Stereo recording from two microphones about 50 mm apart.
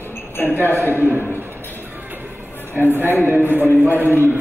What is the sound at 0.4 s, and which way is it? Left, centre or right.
Speech, left.